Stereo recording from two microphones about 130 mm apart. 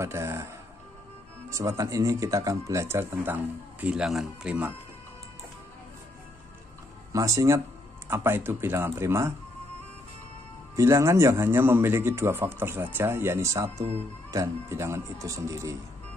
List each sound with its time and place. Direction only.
0.0 s speech: 20° right (ahead or behind)
1.5 s speech: 25° right (ahead or behind)
3.8 s speech: 5° right (ahead or behind)
7.1 s speech: 25° right (ahead or behind)
10.8 s speech: 20° right (ahead or behind)